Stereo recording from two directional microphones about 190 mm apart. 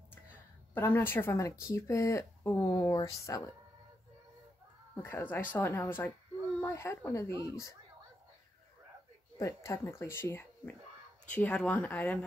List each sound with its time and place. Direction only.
0.7 s speech: 10° left (ahead or behind)
5.0 s speech: 10° left (ahead or behind)
9.4 s speech: 15° left (ahead or behind)